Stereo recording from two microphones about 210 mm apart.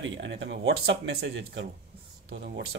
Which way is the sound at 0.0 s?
65° right (ahead or behind).